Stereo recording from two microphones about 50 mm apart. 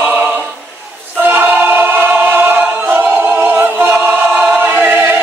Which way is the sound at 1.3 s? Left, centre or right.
Right.